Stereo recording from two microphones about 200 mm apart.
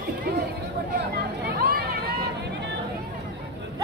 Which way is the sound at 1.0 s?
55° right (ahead or behind).